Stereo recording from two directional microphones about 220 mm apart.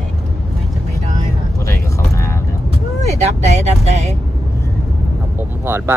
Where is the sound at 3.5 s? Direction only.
30° right (ahead or behind).